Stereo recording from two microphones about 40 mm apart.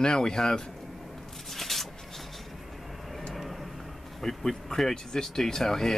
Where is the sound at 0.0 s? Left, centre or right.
Centre.